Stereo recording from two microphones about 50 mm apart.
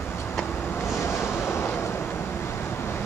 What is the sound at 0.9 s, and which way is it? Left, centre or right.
Vehicle, left.